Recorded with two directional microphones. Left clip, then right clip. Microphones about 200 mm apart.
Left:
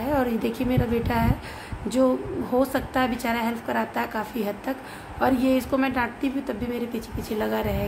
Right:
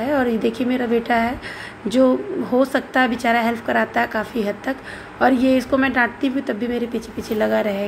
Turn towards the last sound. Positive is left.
turn(degrees=-10)  # may be behind; listen again after turning